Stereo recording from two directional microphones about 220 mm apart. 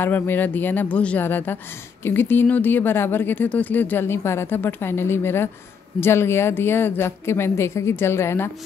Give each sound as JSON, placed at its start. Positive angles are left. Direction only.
{"t": 0.0, "sound": "speech", "side_deg": 10}